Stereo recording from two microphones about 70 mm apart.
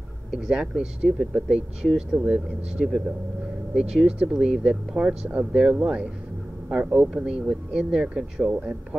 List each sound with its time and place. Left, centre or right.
0.3 s speech: centre